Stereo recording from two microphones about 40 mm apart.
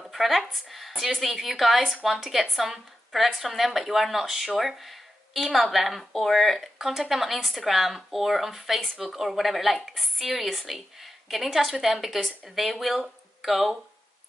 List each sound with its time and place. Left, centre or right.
0.1 s speech: centre
6.8 s speech: centre